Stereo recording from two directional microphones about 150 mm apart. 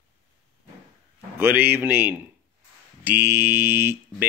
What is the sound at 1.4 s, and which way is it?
Speech, 10° right (ahead or behind).